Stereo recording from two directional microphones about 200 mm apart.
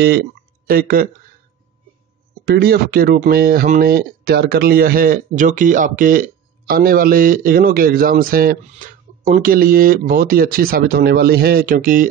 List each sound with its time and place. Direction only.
0.7 s speech: 45° right (ahead or behind)
2.4 s speech: 50° right (ahead or behind)